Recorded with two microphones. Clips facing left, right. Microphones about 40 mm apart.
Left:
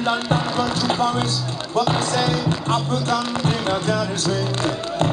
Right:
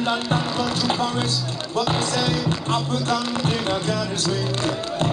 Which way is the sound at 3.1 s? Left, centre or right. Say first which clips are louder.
Left 1 dB; centre.